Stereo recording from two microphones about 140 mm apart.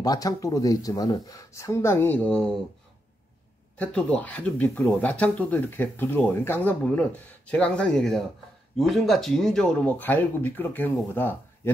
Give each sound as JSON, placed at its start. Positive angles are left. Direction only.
{"t": 0.0, "sound": "speech", "side_deg": 25}
{"t": 3.7, "sound": "speech", "side_deg": 10}